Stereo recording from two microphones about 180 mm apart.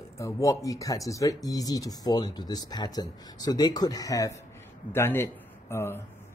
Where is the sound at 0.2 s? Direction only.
15° left (ahead or behind).